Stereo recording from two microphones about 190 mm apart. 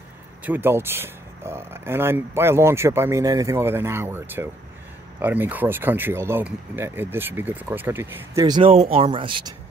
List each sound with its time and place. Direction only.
0.5 s speech: 10° right (ahead or behind); by 9.5 s 25° right (ahead or behind)